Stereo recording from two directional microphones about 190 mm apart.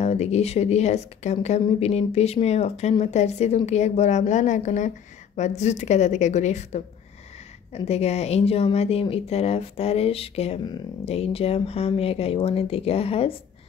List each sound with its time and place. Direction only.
0.0 s speech: 35° left (ahead or behind)